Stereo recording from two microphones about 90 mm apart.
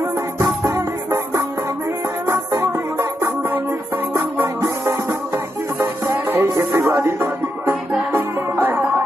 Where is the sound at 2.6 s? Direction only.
25° right (ahead or behind).